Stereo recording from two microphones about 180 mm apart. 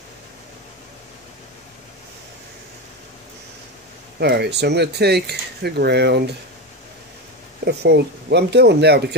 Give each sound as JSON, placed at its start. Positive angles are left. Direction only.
{"t": 4.2, "sound": "speech", "side_deg": -70}
{"t": 7.6, "sound": "speech", "side_deg": -70}